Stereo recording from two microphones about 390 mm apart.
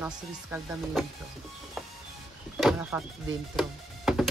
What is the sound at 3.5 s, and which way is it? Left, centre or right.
Music, centre.